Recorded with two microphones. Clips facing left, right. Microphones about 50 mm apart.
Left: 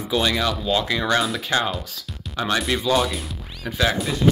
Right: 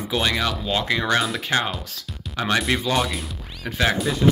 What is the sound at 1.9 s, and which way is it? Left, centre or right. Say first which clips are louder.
Speech: even; right.